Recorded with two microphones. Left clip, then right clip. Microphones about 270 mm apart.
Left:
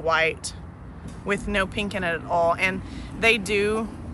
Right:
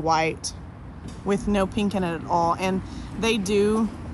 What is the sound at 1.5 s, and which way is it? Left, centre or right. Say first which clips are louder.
Speech: right 1 dB; centre.